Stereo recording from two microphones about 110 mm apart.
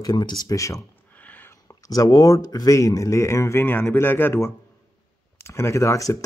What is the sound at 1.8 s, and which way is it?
Speech, 35° left (ahead or behind).